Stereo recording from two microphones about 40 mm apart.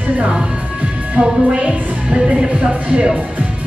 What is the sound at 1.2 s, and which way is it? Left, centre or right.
Music, right.